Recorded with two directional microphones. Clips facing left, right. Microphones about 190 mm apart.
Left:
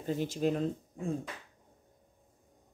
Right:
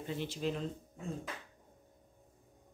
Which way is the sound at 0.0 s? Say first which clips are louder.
Left 6 dB; 45° left (ahead or behind).